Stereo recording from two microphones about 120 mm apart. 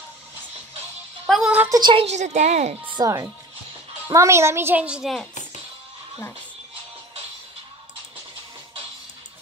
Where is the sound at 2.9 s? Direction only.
35° right (ahead or behind); by 5.1 s 10° right (ahead or behind).